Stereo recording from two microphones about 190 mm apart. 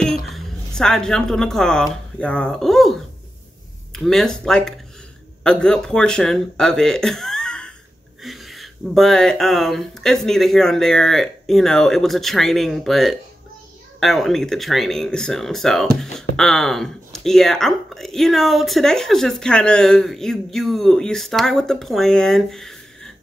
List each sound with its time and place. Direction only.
0.0 s music: centre (ahead or behind)
2.1 s a sound: 5° left (ahead or behind)
3.9 s speech: centre (ahead or behind)